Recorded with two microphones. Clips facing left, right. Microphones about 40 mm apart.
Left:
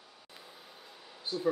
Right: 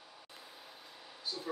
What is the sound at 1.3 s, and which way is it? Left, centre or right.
Speech, left.